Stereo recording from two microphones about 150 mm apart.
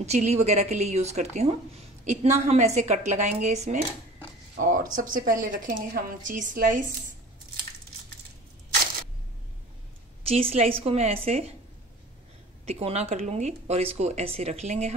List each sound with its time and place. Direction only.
0.0 s speech: 50° right (ahead or behind)
4.6 s a woman's voice: 65° right (ahead or behind)
10.2 s a woman's voice: 40° right (ahead or behind)
12.6 s speech: 45° right (ahead or behind)